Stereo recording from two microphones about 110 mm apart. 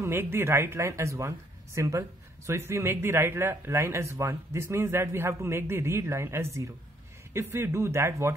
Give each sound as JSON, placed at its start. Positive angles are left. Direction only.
{"t": 0.0, "sound": "a man's voice", "side_deg": -20}